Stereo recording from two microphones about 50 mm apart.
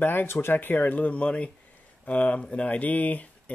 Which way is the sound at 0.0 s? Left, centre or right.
Left.